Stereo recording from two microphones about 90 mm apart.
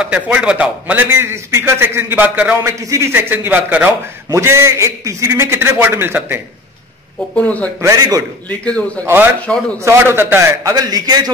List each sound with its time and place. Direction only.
0.0 s a man's voice: 10° right (ahead or behind)
2.6 s a man's voice: 30° right (ahead or behind)
4.3 s a man's voice: 30° right (ahead or behind)
7.3 s a man's voice: 15° left (ahead or behind)
7.9 s a man's voice: 40° right (ahead or behind)
8.5 s a man's voice: 15° left (ahead or behind)
9.8 s a man's voice: 30° right (ahead or behind)
10.6 s a man's voice: 45° right (ahead or behind)